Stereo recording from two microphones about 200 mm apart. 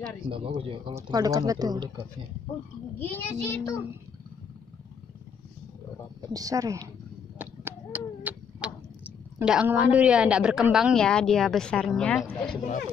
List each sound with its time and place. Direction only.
0.3 s speech: 25° right (ahead or behind)
3.0 s a child's voice: 10° left (ahead or behind)
6.3 s speech: 15° right (ahead or behind)
7.3 s a sound: 10° right (ahead or behind)
9.4 s a woman's voice: 5° right (ahead or behind)